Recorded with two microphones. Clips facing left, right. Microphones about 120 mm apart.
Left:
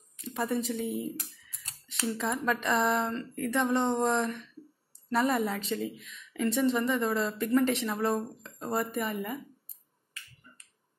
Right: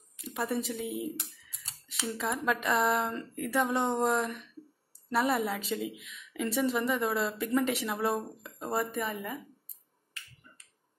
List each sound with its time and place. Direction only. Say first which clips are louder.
0.2 s a woman's voice: left 2 dB; 5° right (ahead or behind)
3.1 s a woman's voice: left 2 dB; 10° right (ahead or behind)